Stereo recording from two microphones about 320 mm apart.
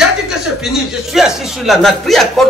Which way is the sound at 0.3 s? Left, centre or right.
Centre.